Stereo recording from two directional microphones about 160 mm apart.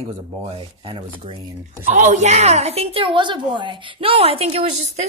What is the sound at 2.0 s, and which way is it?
A woman's voice, 45° right (ahead or behind).